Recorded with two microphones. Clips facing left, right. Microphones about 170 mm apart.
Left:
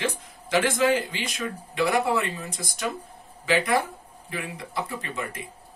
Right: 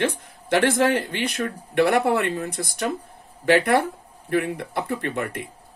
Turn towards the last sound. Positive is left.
turn(degrees=-60)  # may be behind; listen again after turning